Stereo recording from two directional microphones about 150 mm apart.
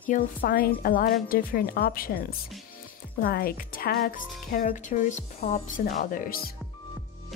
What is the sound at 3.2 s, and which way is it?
Speech, 75° left (ahead or behind).